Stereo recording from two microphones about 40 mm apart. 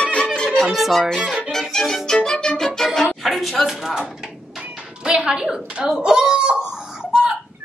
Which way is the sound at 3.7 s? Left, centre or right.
Centre.